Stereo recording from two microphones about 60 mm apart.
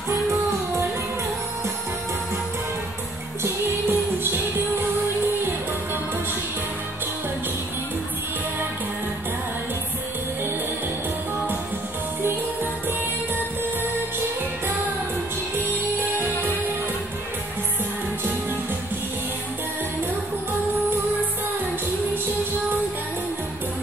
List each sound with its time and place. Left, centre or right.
0.1 s music: right
3.4 s music: right